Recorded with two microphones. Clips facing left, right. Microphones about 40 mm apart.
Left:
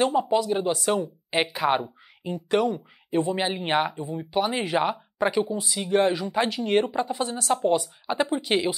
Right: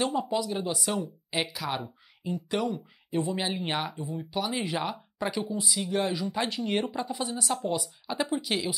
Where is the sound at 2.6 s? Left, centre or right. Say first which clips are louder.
Left 5 dB; centre.